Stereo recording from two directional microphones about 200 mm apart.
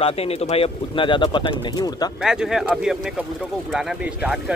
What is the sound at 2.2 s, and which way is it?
Speech, centre (ahead or behind).